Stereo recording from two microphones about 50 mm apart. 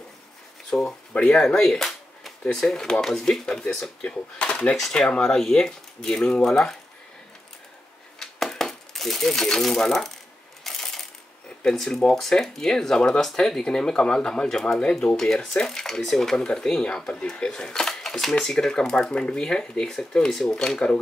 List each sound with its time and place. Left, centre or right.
0.7 s speech: centre
1.6 s a sound: centre
2.5 s speech: centre
5.2 s speech: centre
8.2 s coin: centre
11.6 s speech: centre